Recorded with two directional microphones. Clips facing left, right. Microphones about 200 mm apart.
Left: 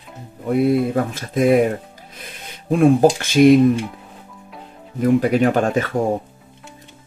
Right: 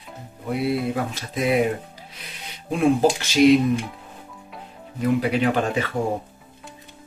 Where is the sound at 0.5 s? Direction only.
50° left (ahead or behind).